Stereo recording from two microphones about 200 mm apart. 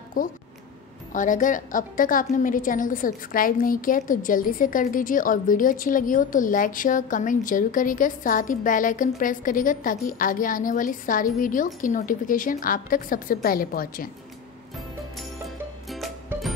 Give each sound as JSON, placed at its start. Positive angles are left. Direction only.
{"t": 0.2, "sound": "a woman's voice", "side_deg": 45}
{"t": 15.1, "sound": "music", "side_deg": 0}